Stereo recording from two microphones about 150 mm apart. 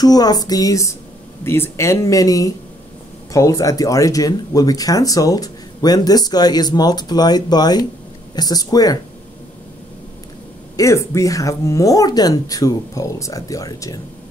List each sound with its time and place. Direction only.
0.0 s speech: 25° left (ahead or behind)
10.8 s speech: 20° left (ahead or behind)